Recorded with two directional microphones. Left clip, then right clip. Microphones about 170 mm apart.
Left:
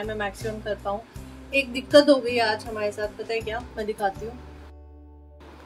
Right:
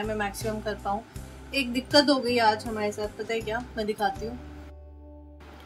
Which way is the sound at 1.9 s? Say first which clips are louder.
Left 5 dB; 15° left (ahead or behind).